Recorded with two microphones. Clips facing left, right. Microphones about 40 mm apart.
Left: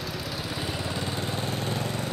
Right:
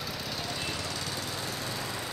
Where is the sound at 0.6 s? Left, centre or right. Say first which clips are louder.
Left 4 dB; centre; by 2.0 s left.